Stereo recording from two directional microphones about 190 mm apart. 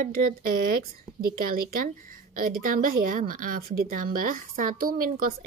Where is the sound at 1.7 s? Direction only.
50° right (ahead or behind).